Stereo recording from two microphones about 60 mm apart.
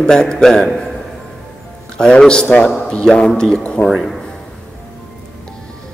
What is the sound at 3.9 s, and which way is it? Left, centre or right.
Speech, centre.